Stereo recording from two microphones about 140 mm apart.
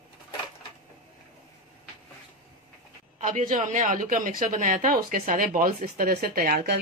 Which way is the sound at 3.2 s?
65° right (ahead or behind).